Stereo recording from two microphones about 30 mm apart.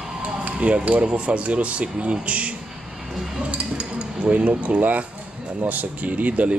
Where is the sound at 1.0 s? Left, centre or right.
Right.